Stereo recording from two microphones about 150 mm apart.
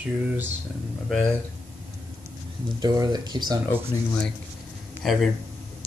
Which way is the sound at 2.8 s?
25° right (ahead or behind).